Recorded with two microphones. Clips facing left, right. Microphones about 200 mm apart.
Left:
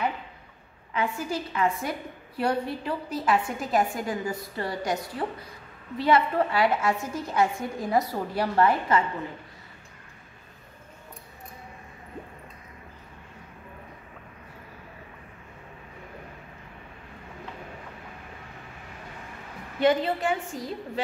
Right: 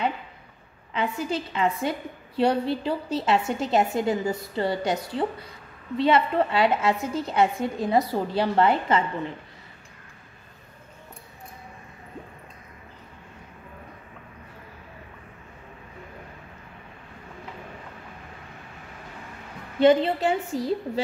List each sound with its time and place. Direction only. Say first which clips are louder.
0.9 s a woman's voice: right 2 dB; 20° right (ahead or behind)
19.8 s a woman's voice: right 4 dB; 25° right (ahead or behind)